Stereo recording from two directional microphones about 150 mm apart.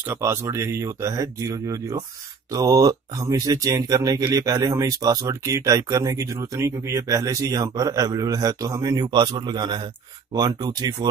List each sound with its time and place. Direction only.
0.1 s speech: 20° right (ahead or behind)